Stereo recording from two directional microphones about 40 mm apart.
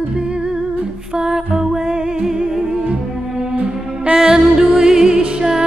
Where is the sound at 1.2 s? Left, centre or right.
Centre.